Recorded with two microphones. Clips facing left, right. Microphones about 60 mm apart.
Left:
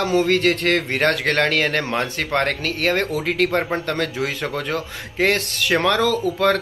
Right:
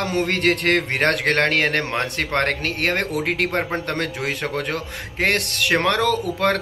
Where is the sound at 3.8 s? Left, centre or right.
Right.